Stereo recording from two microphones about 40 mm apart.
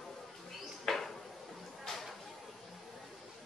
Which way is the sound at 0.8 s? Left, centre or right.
Centre.